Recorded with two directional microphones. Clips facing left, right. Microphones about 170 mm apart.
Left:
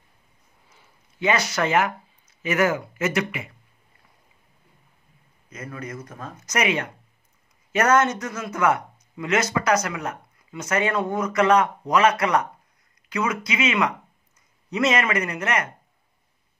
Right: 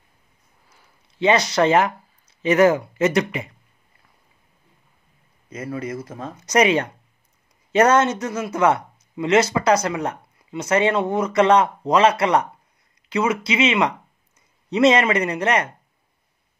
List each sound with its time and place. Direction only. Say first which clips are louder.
1.2 s speech: right 6 dB; 35° right (ahead or behind)
5.5 s speech: right 7 dB; 30° right (ahead or behind)